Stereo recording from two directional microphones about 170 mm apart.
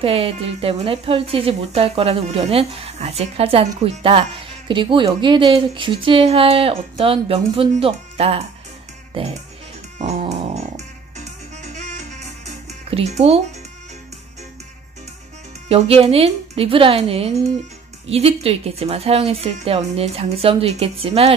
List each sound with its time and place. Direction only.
0.0 s speech: 35° right (ahead or behind)
9.9 s dog: 40° right (ahead or behind)
11.1 s music: 45° right (ahead or behind)
15.7 s speech: 35° right (ahead or behind)